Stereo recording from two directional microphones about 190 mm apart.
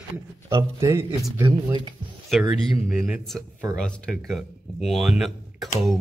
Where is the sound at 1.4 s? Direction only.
25° right (ahead or behind).